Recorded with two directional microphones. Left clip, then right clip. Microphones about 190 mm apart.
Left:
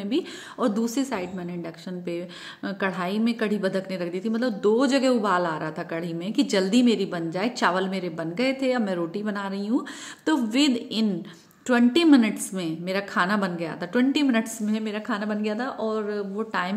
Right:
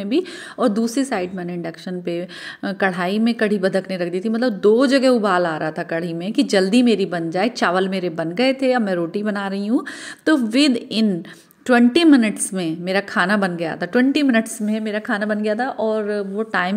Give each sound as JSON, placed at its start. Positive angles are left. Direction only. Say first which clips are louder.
{"t": 0.0, "sound": "a woman's voice", "louder": "right 6 dB", "side_deg": -25}